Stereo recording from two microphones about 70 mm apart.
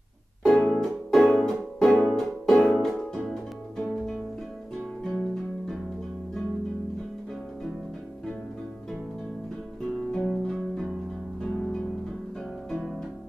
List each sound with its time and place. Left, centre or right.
0.4 s harp: centre
2.1 s music: centre
3.7 s music: centre
10.1 s music: centre